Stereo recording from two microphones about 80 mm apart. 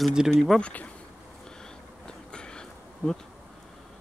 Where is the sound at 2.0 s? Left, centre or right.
Centre.